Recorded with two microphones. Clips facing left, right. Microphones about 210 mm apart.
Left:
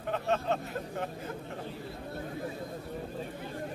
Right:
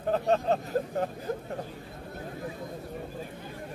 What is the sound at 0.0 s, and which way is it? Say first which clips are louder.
Speech: right 5 dB; 35° right (ahead or behind).